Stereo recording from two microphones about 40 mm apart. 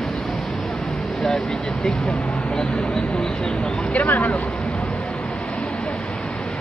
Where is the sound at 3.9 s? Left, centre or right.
Left.